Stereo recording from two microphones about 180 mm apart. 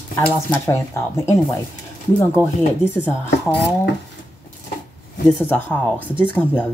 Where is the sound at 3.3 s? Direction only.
70° left (ahead or behind).